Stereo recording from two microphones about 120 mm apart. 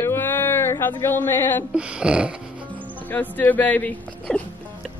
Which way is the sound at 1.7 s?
10° right (ahead or behind).